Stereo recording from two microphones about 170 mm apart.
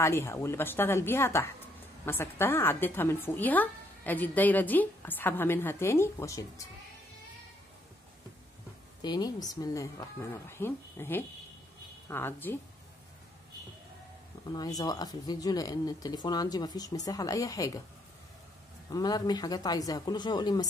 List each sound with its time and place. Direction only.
0.0 s a woman's voice: 15° left (ahead or behind)
9.0 s a woman's voice: 25° left (ahead or behind)
14.5 s speech: 20° left (ahead or behind)
18.9 s speech: 20° left (ahead or behind)